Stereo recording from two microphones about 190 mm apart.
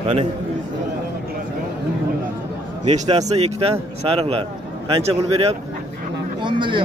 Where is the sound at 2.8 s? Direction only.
35° right (ahead or behind).